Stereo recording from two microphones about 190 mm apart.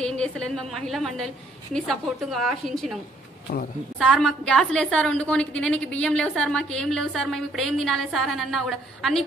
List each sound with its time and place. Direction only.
0.0 s a woman's voice: 5° left (ahead or behind)
4.0 s a woman's voice: centre (ahead or behind)